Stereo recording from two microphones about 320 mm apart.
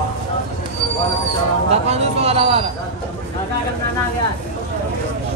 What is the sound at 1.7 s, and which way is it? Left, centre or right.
Speech, centre.